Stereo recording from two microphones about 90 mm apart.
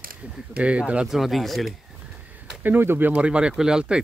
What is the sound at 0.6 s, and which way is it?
Speech, 15° right (ahead or behind).